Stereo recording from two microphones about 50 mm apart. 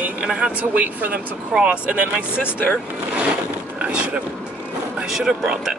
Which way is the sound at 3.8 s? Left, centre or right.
Right.